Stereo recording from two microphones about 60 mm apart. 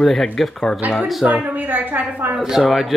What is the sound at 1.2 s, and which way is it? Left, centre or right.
A woman's voice, right.